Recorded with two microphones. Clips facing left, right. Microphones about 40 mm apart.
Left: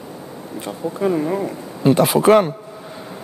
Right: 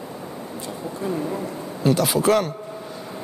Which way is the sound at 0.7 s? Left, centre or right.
Left.